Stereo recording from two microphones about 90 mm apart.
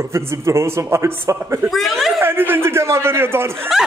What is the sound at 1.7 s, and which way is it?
Speech, centre (ahead or behind).